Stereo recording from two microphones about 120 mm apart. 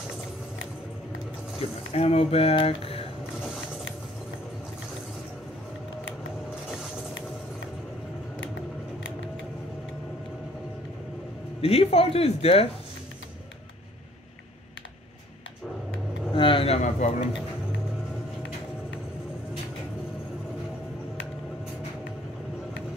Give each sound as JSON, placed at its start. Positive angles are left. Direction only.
{"t": 1.6, "sound": "speech", "side_deg": 55}
{"t": 11.6, "sound": "speech", "side_deg": 55}
{"t": 16.3, "sound": "a sound", "side_deg": 45}